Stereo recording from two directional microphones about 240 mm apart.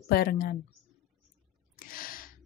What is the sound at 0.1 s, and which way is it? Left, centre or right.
Speech, left.